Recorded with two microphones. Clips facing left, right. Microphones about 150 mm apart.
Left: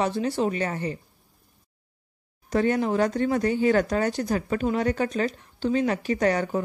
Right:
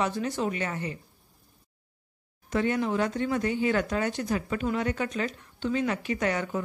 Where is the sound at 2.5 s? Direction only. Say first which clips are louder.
Left 4 dB; 40° left (ahead or behind).